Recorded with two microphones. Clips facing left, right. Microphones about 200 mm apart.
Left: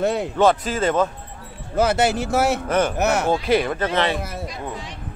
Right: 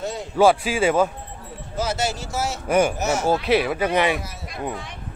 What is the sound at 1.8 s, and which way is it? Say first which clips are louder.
Speech: left 7 dB; 60° left (ahead or behind).